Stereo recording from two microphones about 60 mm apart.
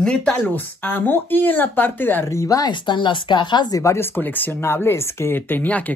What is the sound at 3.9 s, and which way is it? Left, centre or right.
Speech, left.